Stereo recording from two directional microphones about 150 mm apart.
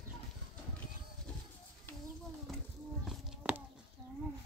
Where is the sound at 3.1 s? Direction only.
10° right (ahead or behind).